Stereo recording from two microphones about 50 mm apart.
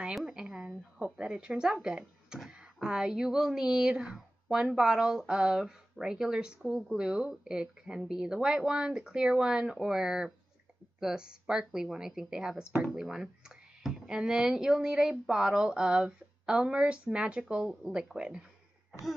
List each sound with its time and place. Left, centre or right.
0.3 s a woman's voice: centre
17.6 s speech: centre